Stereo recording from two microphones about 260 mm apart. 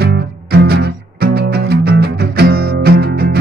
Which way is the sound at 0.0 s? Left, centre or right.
Right.